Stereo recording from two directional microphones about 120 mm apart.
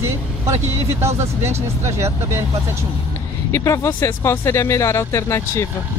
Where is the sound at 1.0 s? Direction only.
20° right (ahead or behind).